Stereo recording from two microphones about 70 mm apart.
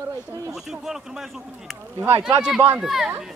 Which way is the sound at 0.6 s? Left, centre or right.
Centre.